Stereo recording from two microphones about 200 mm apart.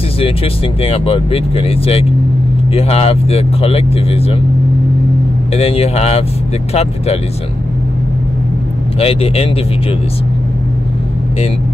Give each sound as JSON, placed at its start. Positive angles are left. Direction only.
{"t": 0.8, "sound": "speech", "side_deg": 30}
{"t": 5.5, "sound": "speech", "side_deg": 30}
{"t": 9.0, "sound": "speech", "side_deg": 30}